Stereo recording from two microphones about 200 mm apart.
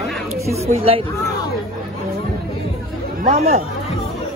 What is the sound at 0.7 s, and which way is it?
Speech, 30° right (ahead or behind).